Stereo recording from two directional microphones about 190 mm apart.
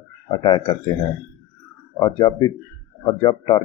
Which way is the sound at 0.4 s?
20° left (ahead or behind).